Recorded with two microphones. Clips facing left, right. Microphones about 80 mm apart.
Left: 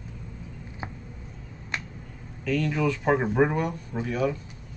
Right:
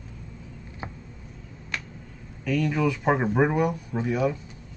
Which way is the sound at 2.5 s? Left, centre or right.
Centre.